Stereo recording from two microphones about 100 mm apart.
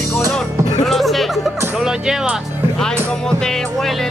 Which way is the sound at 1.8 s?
5° right (ahead or behind).